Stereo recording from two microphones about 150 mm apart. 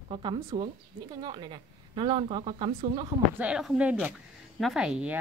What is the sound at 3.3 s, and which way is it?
Speech, 5° right (ahead or behind).